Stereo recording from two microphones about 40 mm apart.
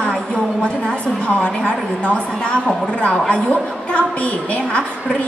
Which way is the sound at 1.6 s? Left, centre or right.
Left.